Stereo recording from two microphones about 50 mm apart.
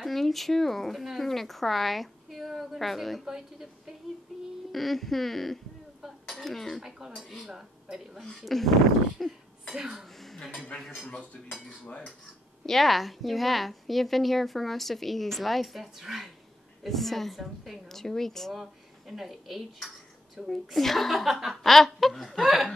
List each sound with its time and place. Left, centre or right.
0.0 s a woman's voice: centre
3.3 s speech: centre
4.3 s child singing: centre
4.7 s a woman's voice: centre
6.2 s cutlery: centre
7.2 s speech: centre
8.2 s a woman's voice: centre
10.2 s a sound: centre
10.7 s cutlery: left
12.6 s a woman's voice: centre
18.5 s a woman's voice: centre